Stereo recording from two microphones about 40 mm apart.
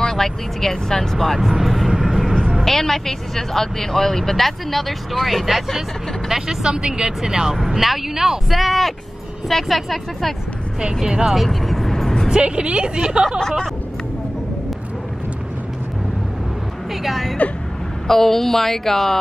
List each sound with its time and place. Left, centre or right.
0.0 s speech: centre
1.6 s vehicle: centre
1.9 s vehicle: centre
2.6 s speech: centre
6.7 s a woman's voice: right
7.5 s speech: centre
11.0 s speech: centre
11.3 s vehicle: centre
12.3 s a woman's voice: right
16.9 s a woman's voice: centre